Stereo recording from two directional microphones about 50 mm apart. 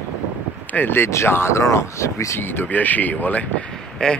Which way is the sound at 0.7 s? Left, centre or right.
Left.